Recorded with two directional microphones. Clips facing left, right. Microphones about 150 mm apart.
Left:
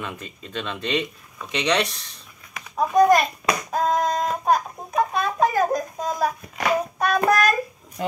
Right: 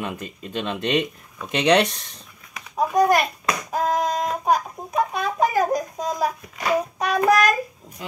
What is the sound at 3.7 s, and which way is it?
Child singing, 10° right (ahead or behind).